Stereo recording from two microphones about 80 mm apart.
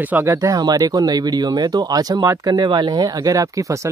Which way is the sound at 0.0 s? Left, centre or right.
Right.